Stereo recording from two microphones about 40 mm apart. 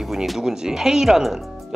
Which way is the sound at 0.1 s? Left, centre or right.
Centre.